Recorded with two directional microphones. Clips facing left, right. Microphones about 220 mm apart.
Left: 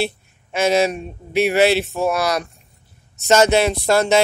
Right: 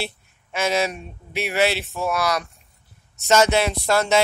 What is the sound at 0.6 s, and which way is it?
Speech, 25° left (ahead or behind).